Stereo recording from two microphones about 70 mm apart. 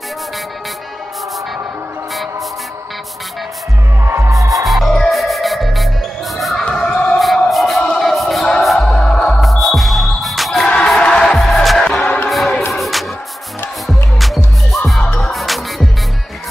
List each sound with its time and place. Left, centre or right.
4.0 s music: right
4.3 s music: right
4.6 s music: centre
6.3 s a sound: centre
6.6 s music: centre
7.2 s a sound: centre
8.0 s music: centre
11.0 s music: centre
11.4 s music: centre
12.3 s choir: centre
12.7 s music: centre